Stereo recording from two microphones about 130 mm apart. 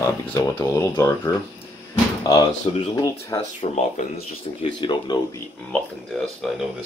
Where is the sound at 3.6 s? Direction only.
55° left (ahead or behind).